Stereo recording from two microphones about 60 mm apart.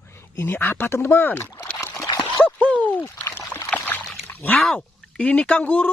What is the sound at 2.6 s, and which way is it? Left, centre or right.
Speech, left.